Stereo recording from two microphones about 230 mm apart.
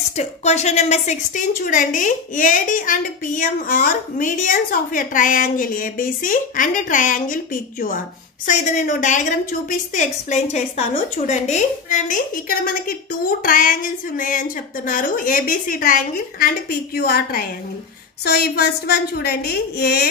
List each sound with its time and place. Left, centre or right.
0.2 s a woman's voice: left
8.5 s a woman's voice: left